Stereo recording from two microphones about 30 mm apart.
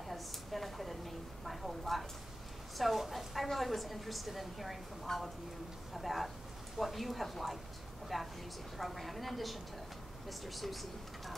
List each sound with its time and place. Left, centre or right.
0.1 s a sound: centre
2.8 s a woman's voice: centre
5.1 s speech: centre
5.9 s a woman's voice: centre